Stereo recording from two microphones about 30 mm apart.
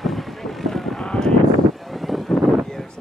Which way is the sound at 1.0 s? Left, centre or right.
Left.